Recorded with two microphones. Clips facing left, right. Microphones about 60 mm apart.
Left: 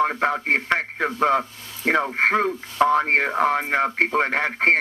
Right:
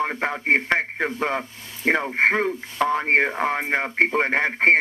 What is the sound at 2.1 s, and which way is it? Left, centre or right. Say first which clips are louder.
Speech: even; right.